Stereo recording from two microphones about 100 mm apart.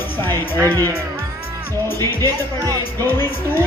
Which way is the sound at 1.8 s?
25° left (ahead or behind).